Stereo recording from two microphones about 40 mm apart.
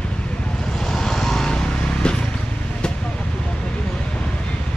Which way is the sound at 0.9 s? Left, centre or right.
Centre.